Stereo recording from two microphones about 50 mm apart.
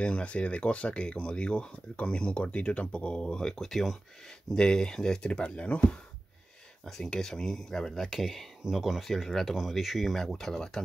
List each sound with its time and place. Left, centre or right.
0.0 s speech: left
6.8 s speech: centre